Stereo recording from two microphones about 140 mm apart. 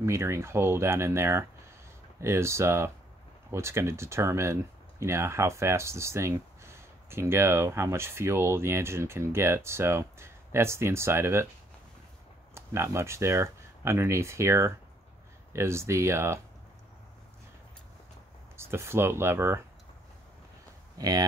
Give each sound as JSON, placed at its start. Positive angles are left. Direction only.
{"t": 0.0, "sound": "speech", "side_deg": -20}
{"t": 12.5, "sound": "speech", "side_deg": -20}
{"t": 18.6, "sound": "speech", "side_deg": -15}
{"t": 21.0, "sound": "speech", "side_deg": -25}